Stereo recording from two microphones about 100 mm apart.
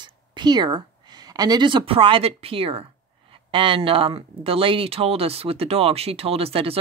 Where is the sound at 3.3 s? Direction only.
60° right (ahead or behind).